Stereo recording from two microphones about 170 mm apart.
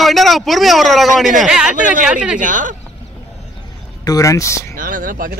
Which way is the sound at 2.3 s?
50° right (ahead or behind).